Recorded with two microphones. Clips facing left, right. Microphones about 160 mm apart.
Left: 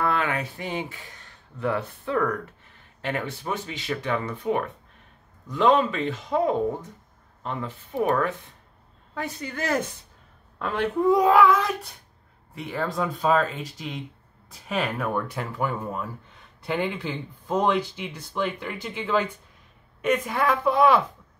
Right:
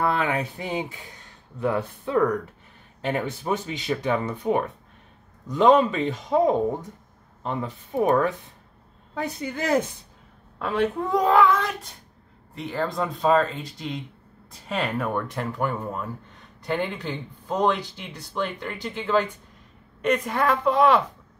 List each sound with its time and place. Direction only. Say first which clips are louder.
0.0 s speech: right 2 dB; 15° right (ahead or behind)
10.6 s speech: left 1 dB; centre (ahead or behind)